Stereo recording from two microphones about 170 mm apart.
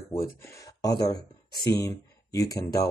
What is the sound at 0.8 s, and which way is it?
Speech, 20° left (ahead or behind).